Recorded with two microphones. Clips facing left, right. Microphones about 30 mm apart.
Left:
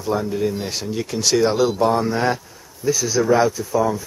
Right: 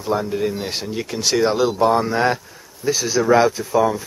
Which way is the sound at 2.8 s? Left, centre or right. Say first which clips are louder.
Even; right.